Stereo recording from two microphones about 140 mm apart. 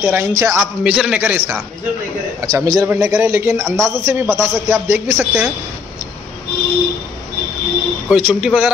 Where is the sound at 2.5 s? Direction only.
25° right (ahead or behind).